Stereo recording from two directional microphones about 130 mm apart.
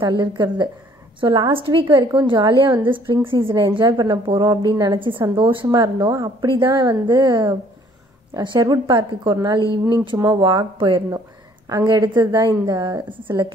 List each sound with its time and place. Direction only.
0.2 s a woman's voice: 35° right (ahead or behind)
5.7 s a woman's voice: 30° right (ahead or behind)